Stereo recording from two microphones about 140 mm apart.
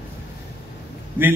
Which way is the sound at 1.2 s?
75° left (ahead or behind).